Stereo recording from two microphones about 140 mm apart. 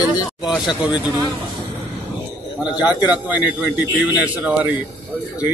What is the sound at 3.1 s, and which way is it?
A man's voice, 10° right (ahead or behind).